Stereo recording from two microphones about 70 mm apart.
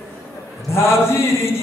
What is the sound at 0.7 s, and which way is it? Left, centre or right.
Speech, left.